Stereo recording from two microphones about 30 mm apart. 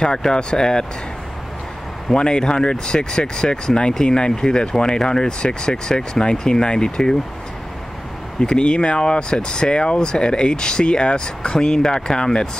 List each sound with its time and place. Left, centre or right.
0.0 s speech: left
2.1 s speech: left
8.4 s speech: left
9.3 s speech: left